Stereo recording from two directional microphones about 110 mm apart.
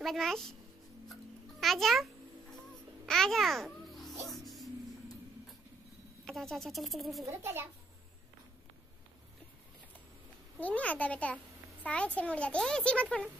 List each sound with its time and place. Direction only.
0.0 s speech: centre (ahead or behind)
1.6 s speech: centre (ahead or behind)
3.1 s babbling: 5° left (ahead or behind)
6.2 s speech: centre (ahead or behind)
7.2 s a child's voice: 20° right (ahead or behind)
10.6 s a child's voice: 15° left (ahead or behind)